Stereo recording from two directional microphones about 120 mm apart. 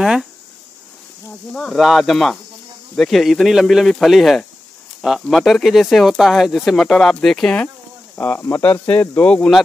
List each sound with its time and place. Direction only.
0.0 s speech: 5° right (ahead or behind)
1.5 s speech: 5° left (ahead or behind)